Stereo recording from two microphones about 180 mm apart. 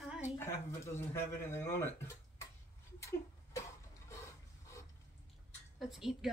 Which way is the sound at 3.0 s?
15° left (ahead or behind).